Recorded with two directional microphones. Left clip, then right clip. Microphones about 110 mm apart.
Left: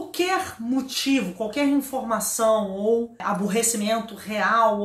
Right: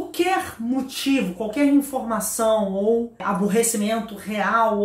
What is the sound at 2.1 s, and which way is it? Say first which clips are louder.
Speech: even; 20° left (ahead or behind).